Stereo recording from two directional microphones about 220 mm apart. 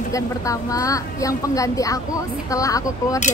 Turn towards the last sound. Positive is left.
turn(degrees=15)  # may be behind; listen again after turning